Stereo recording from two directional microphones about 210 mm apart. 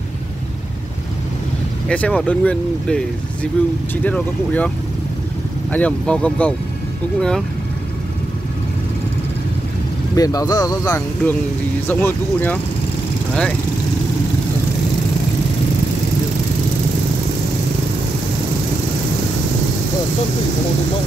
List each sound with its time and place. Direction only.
1.9 s speech: 5° left (ahead or behind)
5.7 s speech: 5° left (ahead or behind)
10.1 s speech: 15° left (ahead or behind)